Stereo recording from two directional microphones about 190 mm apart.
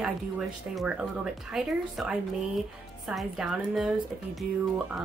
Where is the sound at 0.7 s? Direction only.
5° right (ahead or behind).